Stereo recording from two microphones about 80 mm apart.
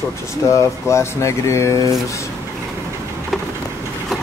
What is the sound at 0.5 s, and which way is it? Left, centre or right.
Speech, left.